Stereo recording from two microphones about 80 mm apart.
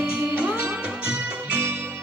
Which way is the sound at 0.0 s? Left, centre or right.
Centre.